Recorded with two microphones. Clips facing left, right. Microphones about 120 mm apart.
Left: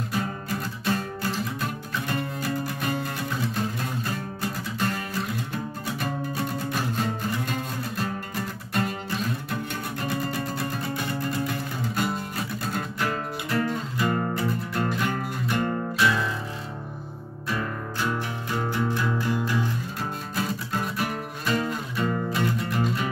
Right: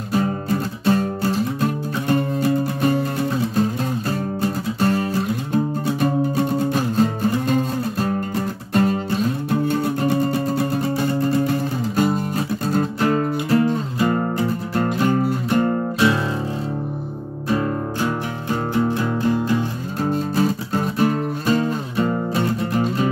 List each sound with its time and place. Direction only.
0.1 s music: 30° right (ahead or behind)
17.5 s music: 35° right (ahead or behind)